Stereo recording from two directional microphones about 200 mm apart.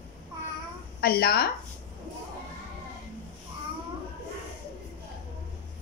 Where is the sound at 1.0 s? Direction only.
50° left (ahead or behind).